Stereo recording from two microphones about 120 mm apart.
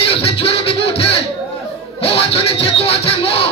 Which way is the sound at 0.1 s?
55° left (ahead or behind).